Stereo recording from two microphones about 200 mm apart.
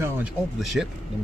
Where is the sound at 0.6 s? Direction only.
Centre (ahead or behind).